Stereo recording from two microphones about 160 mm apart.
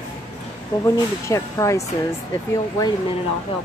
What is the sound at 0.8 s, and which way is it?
Speech, 20° left (ahead or behind).